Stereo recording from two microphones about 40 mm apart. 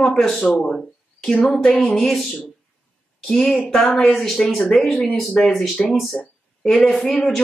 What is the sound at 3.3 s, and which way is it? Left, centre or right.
Speech, left.